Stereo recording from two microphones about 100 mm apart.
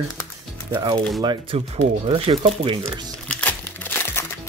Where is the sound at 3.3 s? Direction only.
15° left (ahead or behind).